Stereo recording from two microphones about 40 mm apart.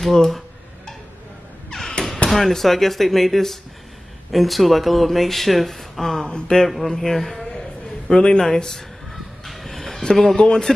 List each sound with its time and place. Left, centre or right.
0.0 s speech: centre
1.9 s a sound: centre
2.2 s speech: centre
6.2 s speech: left
6.9 s a man's voice: centre
9.1 s a sound: centre
10.3 s a man's voice: centre